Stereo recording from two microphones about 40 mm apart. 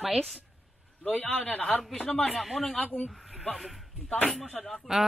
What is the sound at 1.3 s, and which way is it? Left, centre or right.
Speech, left.